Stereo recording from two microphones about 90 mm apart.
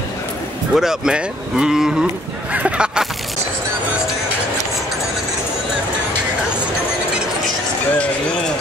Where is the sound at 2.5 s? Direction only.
10° right (ahead or behind).